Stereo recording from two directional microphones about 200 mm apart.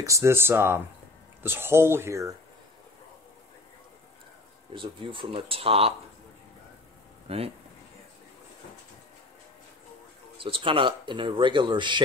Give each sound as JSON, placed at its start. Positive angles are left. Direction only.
{"t": 0.0, "sound": "speech", "side_deg": -15}
{"t": 4.7, "sound": "speech", "side_deg": -25}
{"t": 7.2, "sound": "speech", "side_deg": -30}
{"t": 10.3, "sound": "speech", "side_deg": -25}